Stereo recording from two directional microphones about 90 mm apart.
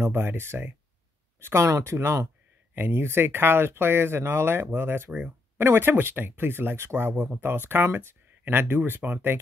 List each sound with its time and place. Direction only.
0.0 s speech: 25° right (ahead or behind)